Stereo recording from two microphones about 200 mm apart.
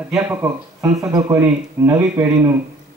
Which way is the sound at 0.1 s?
10° right (ahead or behind).